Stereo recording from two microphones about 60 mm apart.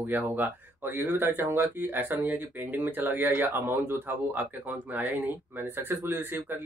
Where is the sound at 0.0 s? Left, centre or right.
Right.